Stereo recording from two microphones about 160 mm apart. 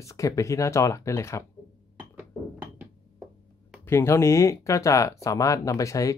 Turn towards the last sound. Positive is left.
turn(degrees=20)  # may be behind; listen again after turning